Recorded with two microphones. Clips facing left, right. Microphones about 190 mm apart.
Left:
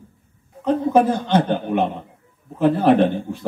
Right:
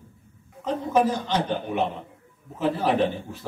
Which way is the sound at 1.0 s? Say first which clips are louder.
Left 6 dB; 55° left (ahead or behind).